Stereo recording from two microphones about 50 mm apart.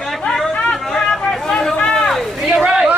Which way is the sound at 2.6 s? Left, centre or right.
Centre.